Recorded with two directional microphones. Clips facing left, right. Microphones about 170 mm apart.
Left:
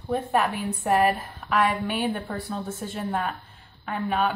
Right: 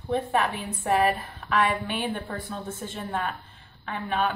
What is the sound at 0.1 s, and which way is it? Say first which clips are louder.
Speech: left 1 dB; 10° left (ahead or behind).